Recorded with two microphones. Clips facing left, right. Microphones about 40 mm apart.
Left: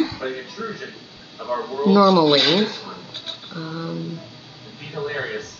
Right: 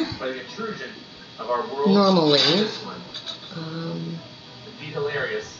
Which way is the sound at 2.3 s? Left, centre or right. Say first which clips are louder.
Left 2 dB; left.